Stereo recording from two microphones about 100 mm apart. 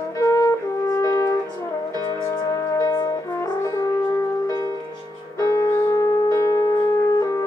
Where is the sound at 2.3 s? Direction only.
30° left (ahead or behind).